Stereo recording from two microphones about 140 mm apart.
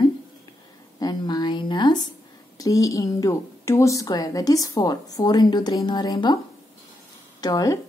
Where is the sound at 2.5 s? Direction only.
25° left (ahead or behind).